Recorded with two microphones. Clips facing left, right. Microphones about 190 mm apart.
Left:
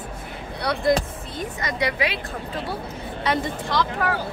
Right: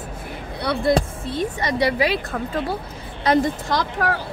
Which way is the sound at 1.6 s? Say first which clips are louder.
Right 4 dB; 35° right (ahead or behind).